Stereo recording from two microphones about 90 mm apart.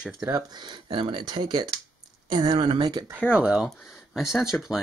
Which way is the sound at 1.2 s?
50° right (ahead or behind).